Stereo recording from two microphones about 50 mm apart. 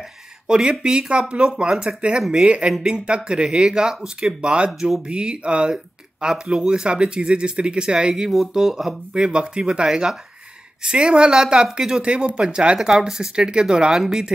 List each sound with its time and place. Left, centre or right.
0.5 s speech: centre
9.1 s speech: centre